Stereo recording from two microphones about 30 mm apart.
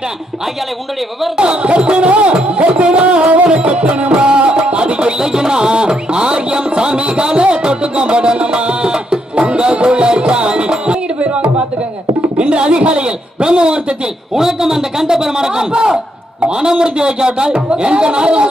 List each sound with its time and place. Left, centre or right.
1.3 s speech: right
2.5 s music: right
5.2 s music: right
12.4 s a sound: right
14.3 s a sound: centre
16.4 s speech: right